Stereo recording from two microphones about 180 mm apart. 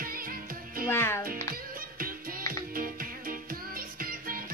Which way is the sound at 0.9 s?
15° left (ahead or behind).